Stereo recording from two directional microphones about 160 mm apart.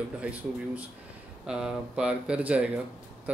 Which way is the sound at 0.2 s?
10° right (ahead or behind).